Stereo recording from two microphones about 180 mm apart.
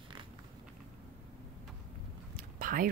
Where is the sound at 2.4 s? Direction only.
50° right (ahead or behind).